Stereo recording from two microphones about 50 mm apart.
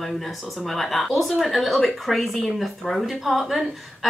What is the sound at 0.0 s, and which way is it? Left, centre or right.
Speech, centre.